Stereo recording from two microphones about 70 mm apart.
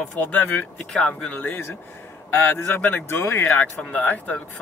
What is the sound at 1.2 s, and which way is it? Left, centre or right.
Speech, left.